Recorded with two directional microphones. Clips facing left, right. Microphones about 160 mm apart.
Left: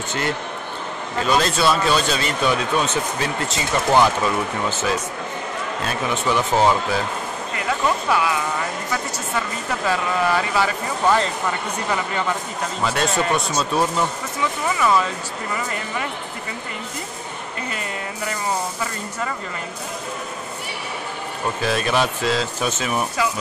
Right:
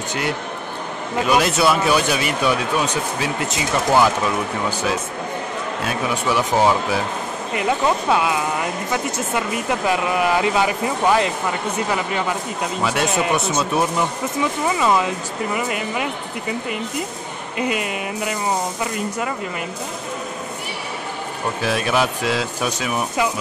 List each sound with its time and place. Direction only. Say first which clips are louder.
1.1 s a woman's voice: right 2 dB; 10° right (ahead or behind)
7.5 s a woman's voice: right 3 dB; 25° right (ahead or behind)
12.8 s a woman's voice: right 1 dB; 10° right (ahead or behind)
17.6 s a woman's voice: right 8 dB; 15° right (ahead or behind)
21.6 s a woman's voice: right 1 dB; 5° right (ahead or behind)